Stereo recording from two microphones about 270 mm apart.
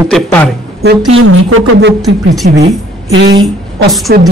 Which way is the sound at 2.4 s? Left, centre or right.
Right.